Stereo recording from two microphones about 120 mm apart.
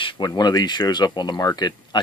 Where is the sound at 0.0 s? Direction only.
35° left (ahead or behind).